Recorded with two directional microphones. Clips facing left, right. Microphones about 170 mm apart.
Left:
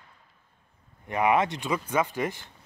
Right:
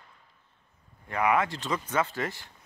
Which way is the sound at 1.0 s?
20° left (ahead or behind).